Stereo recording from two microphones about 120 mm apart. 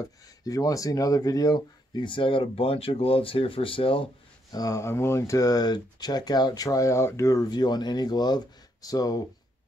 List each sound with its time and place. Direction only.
0.4 s speech: 30° left (ahead or behind); by 4.1 s 50° left (ahead or behind)
4.5 s speech: 30° left (ahead or behind)